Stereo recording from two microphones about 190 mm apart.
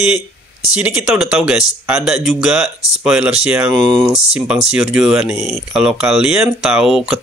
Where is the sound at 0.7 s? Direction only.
5° right (ahead or behind).